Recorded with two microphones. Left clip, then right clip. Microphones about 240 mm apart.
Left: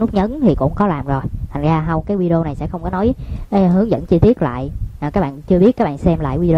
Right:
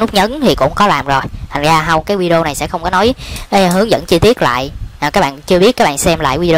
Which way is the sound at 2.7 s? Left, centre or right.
Right.